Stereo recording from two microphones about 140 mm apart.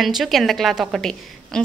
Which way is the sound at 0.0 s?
Centre (ahead or behind).